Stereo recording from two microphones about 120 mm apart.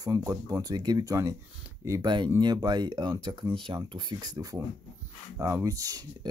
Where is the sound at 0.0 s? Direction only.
30° right (ahead or behind).